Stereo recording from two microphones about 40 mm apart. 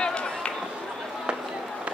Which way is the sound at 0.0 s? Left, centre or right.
Left.